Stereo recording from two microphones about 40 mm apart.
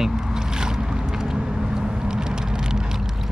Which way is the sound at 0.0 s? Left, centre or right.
Centre.